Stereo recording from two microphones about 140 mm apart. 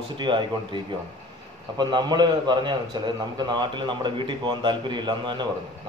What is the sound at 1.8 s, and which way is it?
A man's voice, 30° right (ahead or behind).